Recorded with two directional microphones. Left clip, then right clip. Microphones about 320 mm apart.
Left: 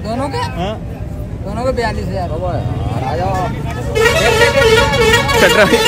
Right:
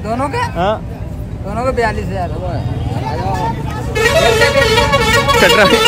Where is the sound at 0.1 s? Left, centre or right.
Centre.